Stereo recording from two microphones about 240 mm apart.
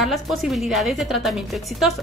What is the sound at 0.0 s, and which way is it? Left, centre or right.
A woman's voice, centre.